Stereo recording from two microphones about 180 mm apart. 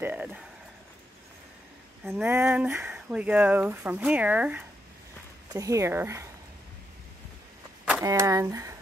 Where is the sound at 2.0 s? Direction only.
10° right (ahead or behind).